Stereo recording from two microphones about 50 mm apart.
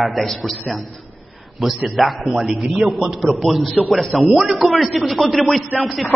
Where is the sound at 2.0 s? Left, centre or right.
Centre.